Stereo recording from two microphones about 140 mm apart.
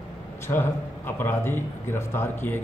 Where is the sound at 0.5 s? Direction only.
15° left (ahead or behind).